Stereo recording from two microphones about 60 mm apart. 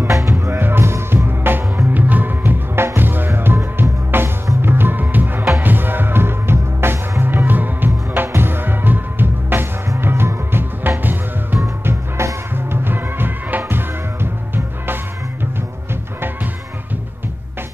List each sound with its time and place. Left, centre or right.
0.1 s music: right
0.5 s music: right